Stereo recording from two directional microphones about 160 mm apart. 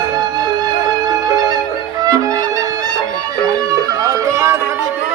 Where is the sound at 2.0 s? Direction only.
20° right (ahead or behind).